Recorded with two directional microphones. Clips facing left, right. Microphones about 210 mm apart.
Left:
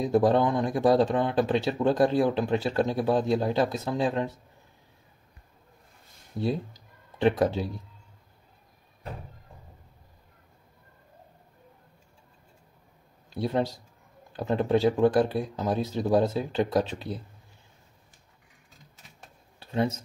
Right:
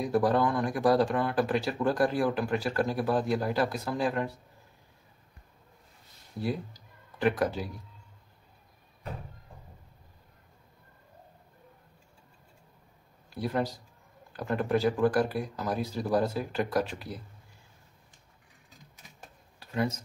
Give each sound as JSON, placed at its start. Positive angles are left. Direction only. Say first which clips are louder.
{"t": 0.0, "sound": "speech", "louder": "left 3 dB", "side_deg": 25}
{"t": 6.4, "sound": "speech", "louder": "left 4 dB", "side_deg": 25}
{"t": 13.3, "sound": "speech", "louder": "left 3 dB", "side_deg": 25}
{"t": 19.6, "sound": "speech", "louder": "left 3 dB", "side_deg": 25}